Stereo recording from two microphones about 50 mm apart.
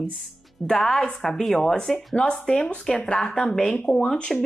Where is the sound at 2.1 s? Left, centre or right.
Centre.